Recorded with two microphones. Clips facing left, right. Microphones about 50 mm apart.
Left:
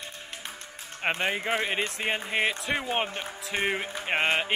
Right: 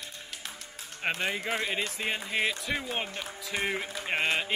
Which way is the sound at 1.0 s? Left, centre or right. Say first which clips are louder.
Left 3 dB; left.